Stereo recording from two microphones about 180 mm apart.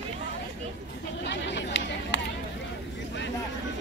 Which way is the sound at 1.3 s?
75° left (ahead or behind).